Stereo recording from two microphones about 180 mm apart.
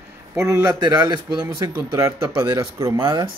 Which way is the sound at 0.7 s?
20° right (ahead or behind).